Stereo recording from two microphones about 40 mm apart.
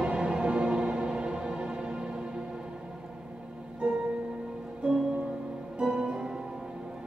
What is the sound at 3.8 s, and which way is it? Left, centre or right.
Music, right.